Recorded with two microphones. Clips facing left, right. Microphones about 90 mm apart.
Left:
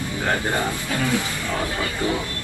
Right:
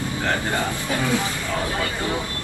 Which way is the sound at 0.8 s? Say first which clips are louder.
Right 1 dB; 20° right (ahead or behind).